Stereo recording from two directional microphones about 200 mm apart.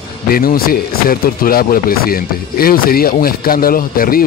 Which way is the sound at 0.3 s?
45° left (ahead or behind).